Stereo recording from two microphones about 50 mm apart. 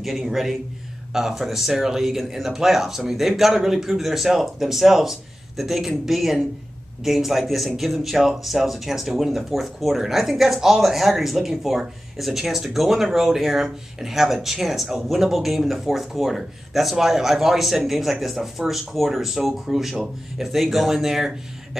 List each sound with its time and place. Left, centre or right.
0.0 s speech: centre